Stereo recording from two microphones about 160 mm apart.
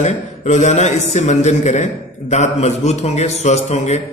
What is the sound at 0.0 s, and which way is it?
A man's voice, 50° left (ahead or behind).